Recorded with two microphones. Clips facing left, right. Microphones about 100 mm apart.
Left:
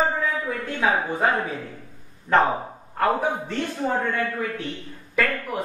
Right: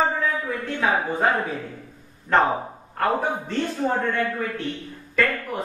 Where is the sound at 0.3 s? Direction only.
Centre (ahead or behind).